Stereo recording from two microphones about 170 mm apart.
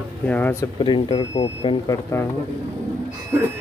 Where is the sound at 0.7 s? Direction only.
30° left (ahead or behind).